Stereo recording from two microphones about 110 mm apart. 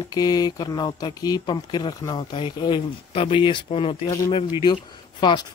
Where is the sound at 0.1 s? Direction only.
35° left (ahead or behind); by 3.9 s 50° left (ahead or behind).